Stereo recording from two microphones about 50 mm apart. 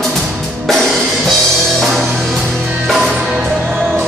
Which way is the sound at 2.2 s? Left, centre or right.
Centre.